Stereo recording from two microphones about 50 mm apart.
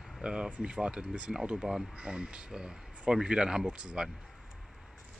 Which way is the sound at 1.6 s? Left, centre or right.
Centre.